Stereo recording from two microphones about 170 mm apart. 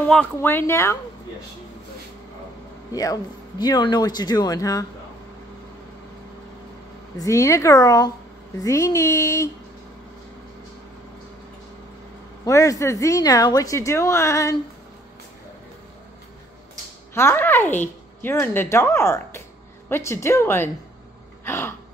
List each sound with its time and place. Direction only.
0.1 s a woman's voice: 10° left (ahead or behind)
2.9 s speech: 20° left (ahead or behind)
7.2 s a woman's voice: 20° left (ahead or behind)
12.4 s a woman's voice: 20° left (ahead or behind)
17.1 s a woman's voice: 15° left (ahead or behind)
21.5 s a sound: 15° left (ahead or behind)